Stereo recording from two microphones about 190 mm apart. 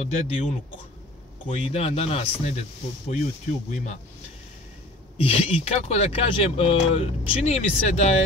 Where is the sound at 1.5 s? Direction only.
35° left (ahead or behind).